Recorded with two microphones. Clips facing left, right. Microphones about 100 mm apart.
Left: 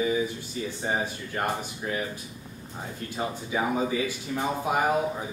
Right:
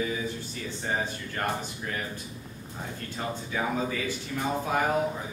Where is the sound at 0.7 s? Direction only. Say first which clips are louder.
Left 1 dB; 15° left (ahead or behind).